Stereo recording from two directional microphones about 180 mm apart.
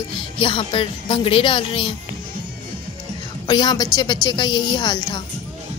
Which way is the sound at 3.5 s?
25° left (ahead or behind).